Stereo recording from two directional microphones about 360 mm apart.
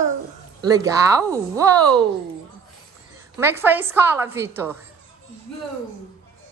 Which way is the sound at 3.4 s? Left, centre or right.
Centre.